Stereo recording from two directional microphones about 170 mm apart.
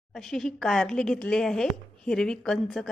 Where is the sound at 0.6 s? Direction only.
Centre (ahead or behind).